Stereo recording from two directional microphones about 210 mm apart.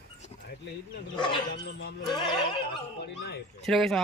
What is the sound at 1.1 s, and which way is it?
Neigh, 20° left (ahead or behind).